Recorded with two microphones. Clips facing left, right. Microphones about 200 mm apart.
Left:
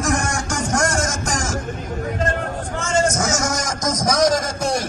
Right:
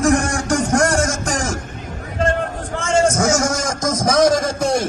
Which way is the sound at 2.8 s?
55° right (ahead or behind).